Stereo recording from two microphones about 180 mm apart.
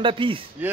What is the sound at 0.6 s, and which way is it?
Speech, 10° right (ahead or behind).